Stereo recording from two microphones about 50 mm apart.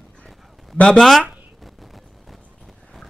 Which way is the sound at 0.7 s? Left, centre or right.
Left.